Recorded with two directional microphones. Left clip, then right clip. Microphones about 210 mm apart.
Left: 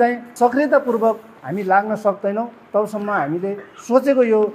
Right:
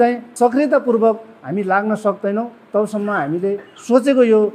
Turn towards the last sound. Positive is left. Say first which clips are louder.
# right 2 dB
turn(degrees=-40)  # may be behind; listen again after turning